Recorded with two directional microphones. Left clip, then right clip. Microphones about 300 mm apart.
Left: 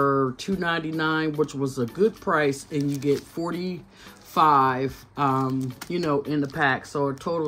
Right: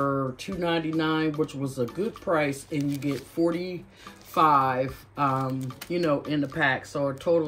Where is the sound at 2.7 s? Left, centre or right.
Centre.